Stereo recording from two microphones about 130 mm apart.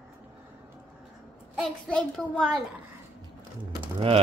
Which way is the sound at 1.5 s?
5° left (ahead or behind).